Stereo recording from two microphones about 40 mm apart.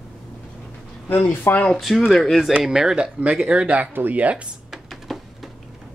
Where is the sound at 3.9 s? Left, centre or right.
Right.